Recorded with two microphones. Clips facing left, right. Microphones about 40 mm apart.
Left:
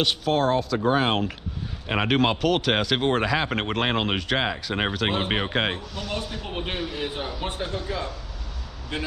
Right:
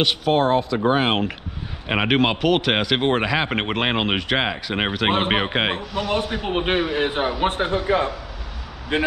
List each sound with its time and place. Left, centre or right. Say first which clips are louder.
0.3 s speech: right 4 dB; right
5.1 s a man's voice: right 5 dB; right
5.6 s speech: right 4 dB; right
6.1 s a man's voice: right 8 dB; right